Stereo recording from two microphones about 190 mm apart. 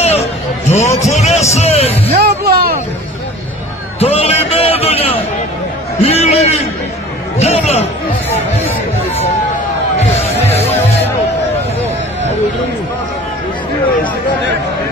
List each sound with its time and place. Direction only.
0.0 s music: 35° left (ahead or behind)
2.1 s music: 55° right (ahead or behind)
4.0 s a sound: 30° left (ahead or behind)
5.9 s a man's voice: 35° left (ahead or behind)